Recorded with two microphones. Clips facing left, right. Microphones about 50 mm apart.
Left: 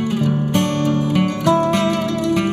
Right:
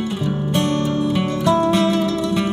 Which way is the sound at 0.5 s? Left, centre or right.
Left.